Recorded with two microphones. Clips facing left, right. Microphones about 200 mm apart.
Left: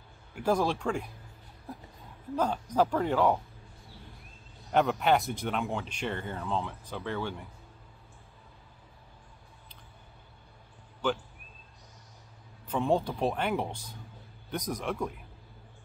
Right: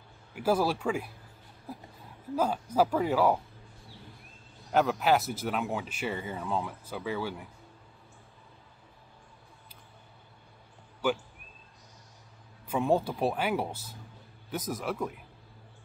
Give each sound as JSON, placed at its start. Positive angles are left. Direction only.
{"t": 0.3, "sound": "speech", "side_deg": -5}
{"t": 2.3, "sound": "speech", "side_deg": -5}
{"t": 4.7, "sound": "speech", "side_deg": 0}
{"t": 11.0, "sound": "speech", "side_deg": -10}
{"t": 12.6, "sound": "speech", "side_deg": -10}